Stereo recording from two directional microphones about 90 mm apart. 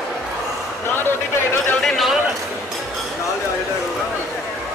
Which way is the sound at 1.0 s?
25° left (ahead or behind).